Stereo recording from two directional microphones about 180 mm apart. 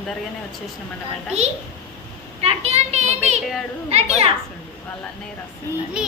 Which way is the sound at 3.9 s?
35° right (ahead or behind).